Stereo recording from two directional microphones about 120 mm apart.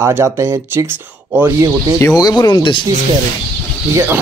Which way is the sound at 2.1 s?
30° left (ahead or behind).